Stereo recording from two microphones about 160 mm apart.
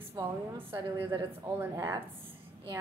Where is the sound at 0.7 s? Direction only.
15° right (ahead or behind).